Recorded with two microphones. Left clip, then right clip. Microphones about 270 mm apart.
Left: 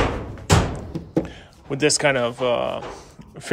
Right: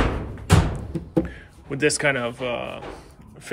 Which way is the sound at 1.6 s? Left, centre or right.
Centre.